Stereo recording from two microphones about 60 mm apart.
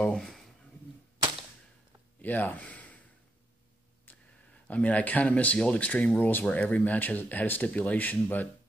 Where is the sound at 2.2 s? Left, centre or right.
Left.